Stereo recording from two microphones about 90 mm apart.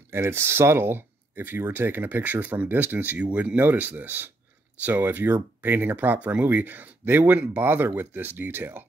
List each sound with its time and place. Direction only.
0.1 s speech: 25° right (ahead or behind)